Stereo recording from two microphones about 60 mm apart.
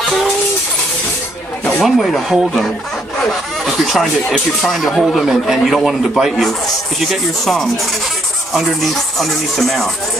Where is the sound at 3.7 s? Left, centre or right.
Centre.